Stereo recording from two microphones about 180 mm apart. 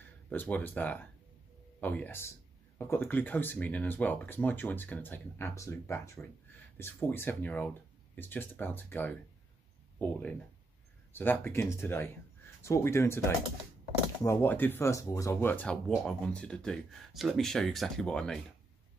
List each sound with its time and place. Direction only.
0.3 s speech: 10° left (ahead or behind)
14.2 s speech: 15° left (ahead or behind)